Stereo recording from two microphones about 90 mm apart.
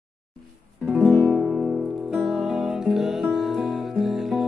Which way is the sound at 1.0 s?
20° left (ahead or behind).